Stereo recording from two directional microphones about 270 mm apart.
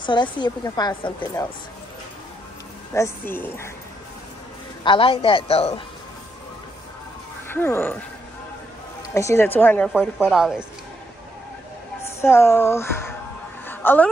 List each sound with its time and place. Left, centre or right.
0.0 s a woman's voice: centre
2.9 s a woman's voice: centre
4.8 s a woman's voice: centre
7.4 s speech: centre
9.1 s a woman's voice: centre
12.0 s a woman's voice: centre
13.7 s a sound: centre